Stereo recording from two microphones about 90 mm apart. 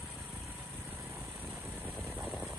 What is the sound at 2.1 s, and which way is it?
Vehicle, 20° right (ahead or behind).